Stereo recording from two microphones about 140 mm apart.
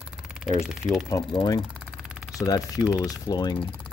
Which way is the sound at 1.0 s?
30° left (ahead or behind).